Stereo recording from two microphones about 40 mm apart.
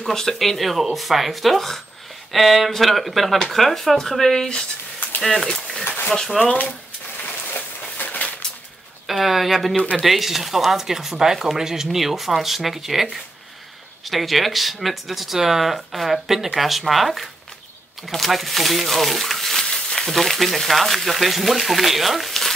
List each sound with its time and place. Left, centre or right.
0.1 s speech: centre
5.9 s a sound: left
6.4 s speech: centre
7.5 s a sound: left
9.0 s speech: centre
20.1 s speech: centre